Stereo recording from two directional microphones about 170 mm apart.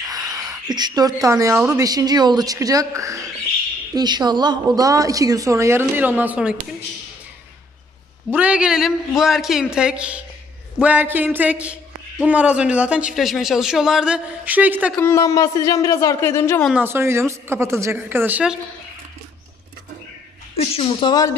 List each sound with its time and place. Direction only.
0.1 s a sound: 20° right (ahead or behind)
0.5 s a woman's voice: 25° right (ahead or behind); by 6.5 s 10° right (ahead or behind)
8.3 s a man's voice: 10° right (ahead or behind)
15.0 s a man's voice: 15° left (ahead or behind)
16.8 s a man's voice: 15° right (ahead or behind)
20.5 s a woman's voice: 35° left (ahead or behind)
21.1 s a man's voice: 20° left (ahead or behind)